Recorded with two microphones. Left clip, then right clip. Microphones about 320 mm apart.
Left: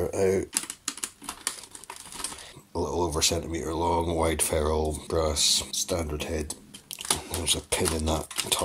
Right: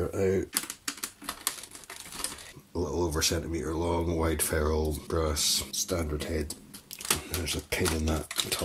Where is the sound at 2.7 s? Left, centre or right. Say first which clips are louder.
Left 3 dB; centre.